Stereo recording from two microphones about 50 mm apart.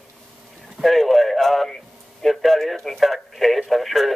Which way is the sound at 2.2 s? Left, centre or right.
Centre.